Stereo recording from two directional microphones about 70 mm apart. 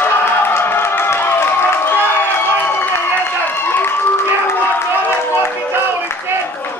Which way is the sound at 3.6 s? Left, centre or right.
Left.